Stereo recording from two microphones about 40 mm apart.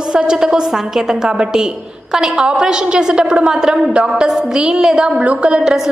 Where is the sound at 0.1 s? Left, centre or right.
Centre.